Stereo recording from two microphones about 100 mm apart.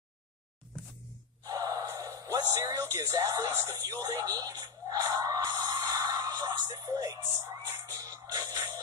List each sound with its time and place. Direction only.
1.4 s gasp: 40° right (ahead or behind)
7.8 s music: 35° right (ahead or behind)